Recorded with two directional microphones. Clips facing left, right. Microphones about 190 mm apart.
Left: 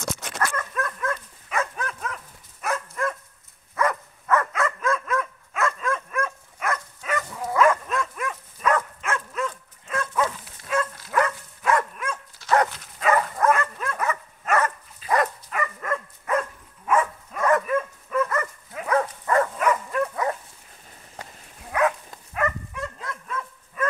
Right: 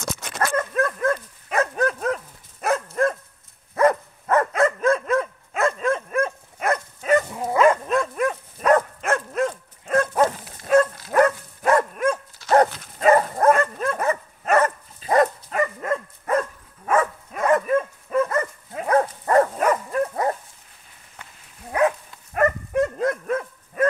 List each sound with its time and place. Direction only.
0.6 s dog: 45° right (ahead or behind)
16.3 s dog: 45° right (ahead or behind)
17.4 s dog: 30° right (ahead or behind)
21.2 s dog: 35° left (ahead or behind)
22.3 s dog: 50° right (ahead or behind)